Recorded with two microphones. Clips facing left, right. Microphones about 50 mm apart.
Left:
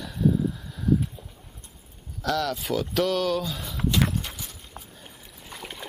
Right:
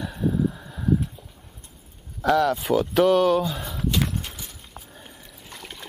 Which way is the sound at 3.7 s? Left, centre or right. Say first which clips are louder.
Left 3 dB; centre.